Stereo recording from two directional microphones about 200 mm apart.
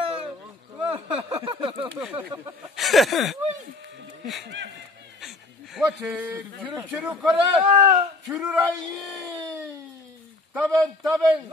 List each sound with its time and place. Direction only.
0.0 s a sound: 30° right (ahead or behind)
2.0 s a man's voice: 5° right (ahead or behind)
5.8 s a man's voice: 5° right (ahead or behind)
7.6 s speech: 35° right (ahead or behind)
8.3 s speech: 5° right (ahead or behind)
10.5 s a man's voice: centre (ahead or behind)